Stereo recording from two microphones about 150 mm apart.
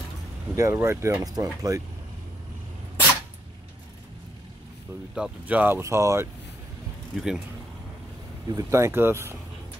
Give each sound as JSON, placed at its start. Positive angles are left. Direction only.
{"t": 0.6, "sound": "speech", "side_deg": -20}
{"t": 5.1, "sound": "speech", "side_deg": -5}
{"t": 7.2, "sound": "speech", "side_deg": 0}
{"t": 8.5, "sound": "speech", "side_deg": -20}